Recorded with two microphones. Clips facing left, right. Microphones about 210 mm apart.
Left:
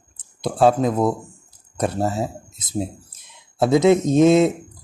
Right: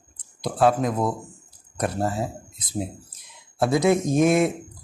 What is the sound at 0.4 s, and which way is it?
Speech, 25° left (ahead or behind).